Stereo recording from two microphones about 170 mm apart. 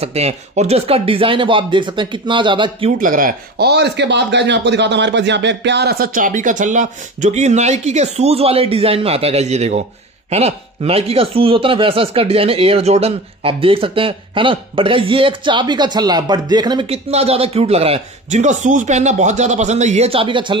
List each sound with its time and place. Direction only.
0.0 s speech: 40° right (ahead or behind)
3.0 s speech: 55° right (ahead or behind); by 16.9 s 25° right (ahead or behind)
16.9 s speech: 35° right (ahead or behind)